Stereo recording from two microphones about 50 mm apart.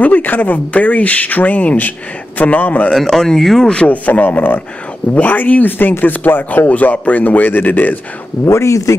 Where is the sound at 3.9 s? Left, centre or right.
Left.